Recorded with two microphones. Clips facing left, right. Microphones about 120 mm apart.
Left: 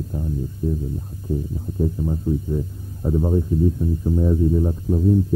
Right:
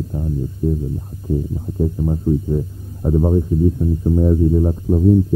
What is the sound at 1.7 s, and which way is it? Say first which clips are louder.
Speech: right 3 dB; 15° right (ahead or behind).